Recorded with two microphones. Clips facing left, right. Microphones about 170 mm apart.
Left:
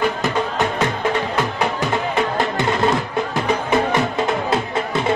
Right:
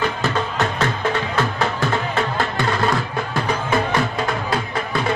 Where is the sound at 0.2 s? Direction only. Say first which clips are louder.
Left 1 dB; 15° left (ahead or behind).